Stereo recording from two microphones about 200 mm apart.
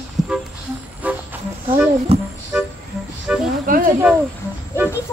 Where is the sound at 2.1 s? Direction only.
30° right (ahead or behind).